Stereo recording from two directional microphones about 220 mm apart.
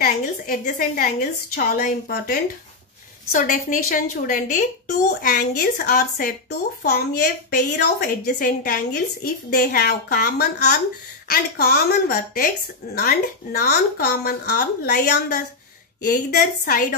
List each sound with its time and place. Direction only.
0.0 s a woman's voice: 40° left (ahead or behind)